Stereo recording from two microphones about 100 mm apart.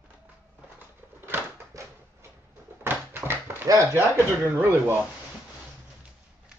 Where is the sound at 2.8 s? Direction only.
20° right (ahead or behind).